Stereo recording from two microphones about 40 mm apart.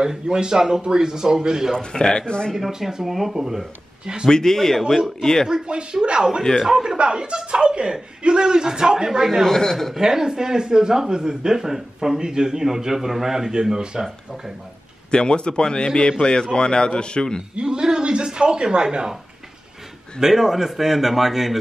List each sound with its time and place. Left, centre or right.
0.0 s speech: centre
1.8 s a man's voice: centre
2.5 s speech: centre
4.0 s speech: centre
4.3 s a man's voice: centre
5.2 s a man's voice: centre
5.5 s speech: right
6.6 s speech: centre
7.0 s speech: right
9.4 s a man's voice: centre
9.9 s speech: centre
15.0 s a man's voice: left
17.6 s speech: centre
20.2 s speech: centre